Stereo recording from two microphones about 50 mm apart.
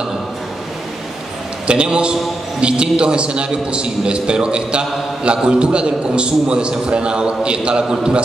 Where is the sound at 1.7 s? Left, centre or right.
Right.